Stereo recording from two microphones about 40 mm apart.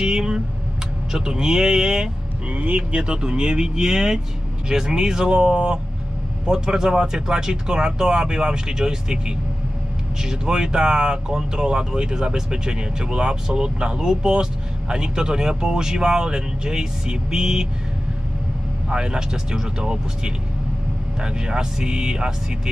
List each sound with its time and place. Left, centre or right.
0.0 s a sound: centre
1.1 s speech: centre
2.5 s speech: right
2.9 s speech: right
10.4 s speech: centre
18.9 s speech: right